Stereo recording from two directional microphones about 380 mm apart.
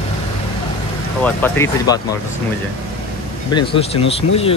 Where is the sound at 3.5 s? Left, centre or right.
Centre.